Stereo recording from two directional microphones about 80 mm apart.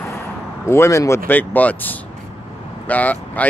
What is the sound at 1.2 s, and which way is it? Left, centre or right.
Speech, left.